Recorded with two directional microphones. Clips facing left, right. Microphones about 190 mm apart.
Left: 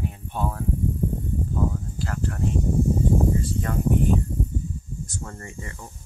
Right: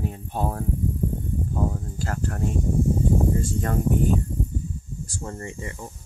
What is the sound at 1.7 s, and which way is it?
Speech, 45° right (ahead or behind).